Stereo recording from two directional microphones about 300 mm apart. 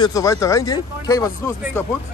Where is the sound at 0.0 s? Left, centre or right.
Centre.